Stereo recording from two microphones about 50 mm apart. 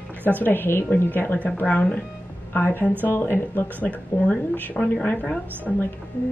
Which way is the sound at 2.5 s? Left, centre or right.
Left.